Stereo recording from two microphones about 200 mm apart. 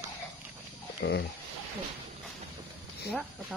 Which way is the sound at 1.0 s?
60° left (ahead or behind).